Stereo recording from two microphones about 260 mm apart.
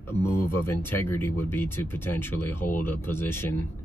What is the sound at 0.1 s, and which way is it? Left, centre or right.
Speech, centre.